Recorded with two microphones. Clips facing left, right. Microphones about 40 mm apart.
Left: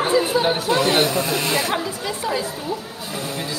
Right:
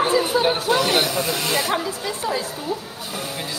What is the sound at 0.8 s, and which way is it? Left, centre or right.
Speech, left.